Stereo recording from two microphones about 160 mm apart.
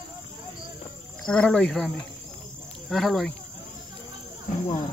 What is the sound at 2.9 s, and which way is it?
Speech, centre (ahead or behind).